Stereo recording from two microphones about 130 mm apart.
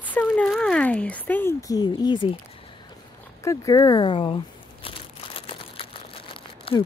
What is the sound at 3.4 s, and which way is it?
Speech, 30° left (ahead or behind).